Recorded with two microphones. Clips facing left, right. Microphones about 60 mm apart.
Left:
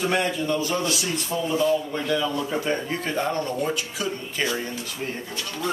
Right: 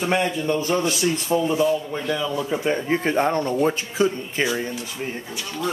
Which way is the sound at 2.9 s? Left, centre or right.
Right.